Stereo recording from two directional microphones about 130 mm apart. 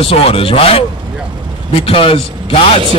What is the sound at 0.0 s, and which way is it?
Speech, 50° left (ahead or behind).